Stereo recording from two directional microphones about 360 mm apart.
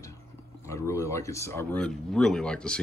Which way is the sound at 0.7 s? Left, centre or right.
Centre.